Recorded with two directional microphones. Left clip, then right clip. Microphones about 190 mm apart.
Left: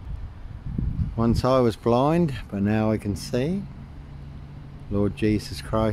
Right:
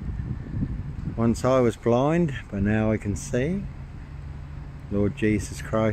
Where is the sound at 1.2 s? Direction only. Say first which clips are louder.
Left 1 dB; 10° left (ahead or behind).